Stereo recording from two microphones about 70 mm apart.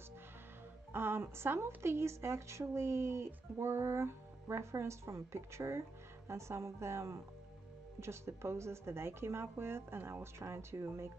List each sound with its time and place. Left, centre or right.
0.9 s speech: right